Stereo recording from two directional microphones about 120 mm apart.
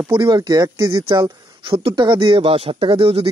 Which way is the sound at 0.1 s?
40° right (ahead or behind).